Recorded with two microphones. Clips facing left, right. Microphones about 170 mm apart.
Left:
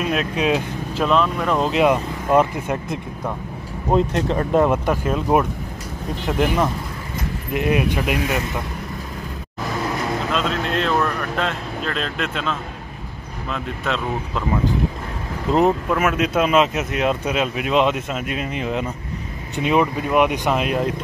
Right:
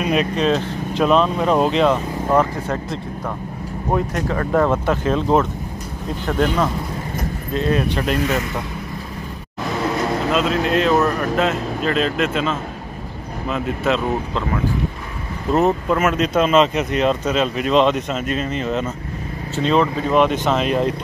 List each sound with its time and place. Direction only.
0.0 s speech: centre (ahead or behind)
0.5 s speech: 10° left (ahead or behind)
1.1 s speech: 25° right (ahead or behind)
1.7 s speech: 10° left (ahead or behind)
10.3 s speech: 5° right (ahead or behind)
15.5 s speech: 20° left (ahead or behind)
15.9 s speech: 5° left (ahead or behind)